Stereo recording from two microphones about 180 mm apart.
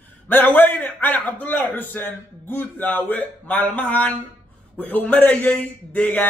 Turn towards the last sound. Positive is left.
turn(degrees=10)  # may be behind; listen again after turning